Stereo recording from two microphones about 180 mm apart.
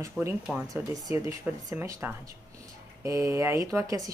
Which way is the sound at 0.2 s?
10° right (ahead or behind).